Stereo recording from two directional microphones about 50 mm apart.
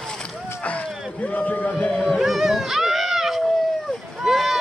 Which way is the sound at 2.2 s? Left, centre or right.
Centre.